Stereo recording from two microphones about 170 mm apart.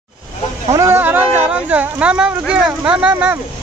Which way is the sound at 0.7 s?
15° right (ahead or behind).